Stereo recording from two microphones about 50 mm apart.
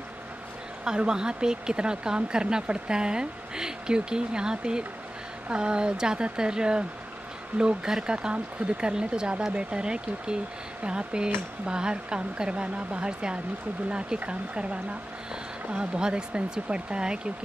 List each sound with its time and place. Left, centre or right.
0.8 s speech: centre